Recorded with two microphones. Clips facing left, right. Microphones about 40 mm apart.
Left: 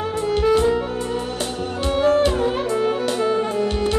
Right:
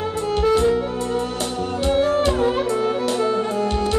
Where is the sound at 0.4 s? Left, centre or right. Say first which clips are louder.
Even; centre.